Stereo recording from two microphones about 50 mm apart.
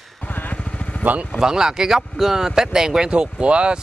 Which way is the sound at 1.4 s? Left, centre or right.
Centre.